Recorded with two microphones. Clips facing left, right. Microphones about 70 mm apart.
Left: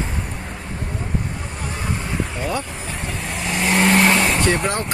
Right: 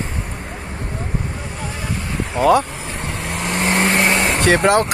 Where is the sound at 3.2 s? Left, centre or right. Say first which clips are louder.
Right 3 dB; right.